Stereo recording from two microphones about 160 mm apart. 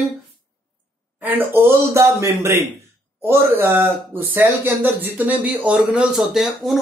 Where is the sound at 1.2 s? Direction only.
15° right (ahead or behind).